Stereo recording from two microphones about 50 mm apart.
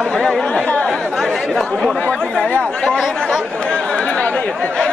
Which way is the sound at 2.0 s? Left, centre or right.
Centre.